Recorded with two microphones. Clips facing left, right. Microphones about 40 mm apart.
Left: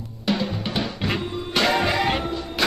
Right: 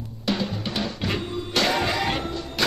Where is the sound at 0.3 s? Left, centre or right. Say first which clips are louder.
Left 2 dB; centre.